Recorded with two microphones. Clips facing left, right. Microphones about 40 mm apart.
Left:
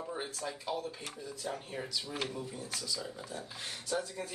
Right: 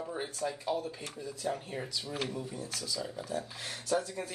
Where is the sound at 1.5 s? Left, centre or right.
Centre.